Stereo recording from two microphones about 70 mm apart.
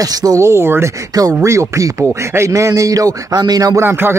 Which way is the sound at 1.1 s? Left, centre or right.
Right.